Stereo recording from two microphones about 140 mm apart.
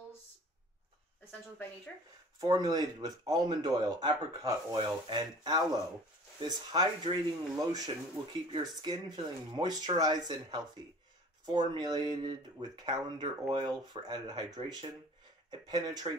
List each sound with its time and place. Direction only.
2.4 s speech: 25° right (ahead or behind)